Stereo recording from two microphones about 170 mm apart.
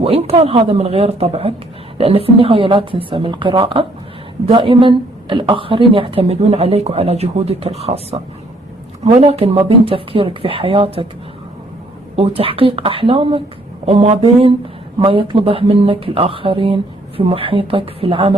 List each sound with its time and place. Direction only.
0.0 s a woman's voice: 35° right (ahead or behind)
12.2 s a woman's voice: 35° right (ahead or behind)